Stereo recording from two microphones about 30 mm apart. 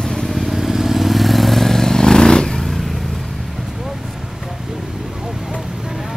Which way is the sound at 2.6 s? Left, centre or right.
Centre.